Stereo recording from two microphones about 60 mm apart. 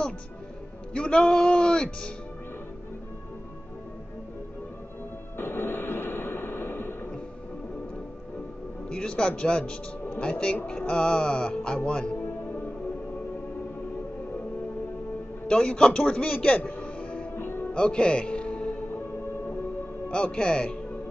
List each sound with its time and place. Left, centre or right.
0.9 s music: centre
5.4 s music: left
8.8 s speech: centre
10.9 s music: centre
12.2 s music: left
15.4 s a man's voice: centre
17.4 s music: left
17.7 s music: centre
20.1 s speech: centre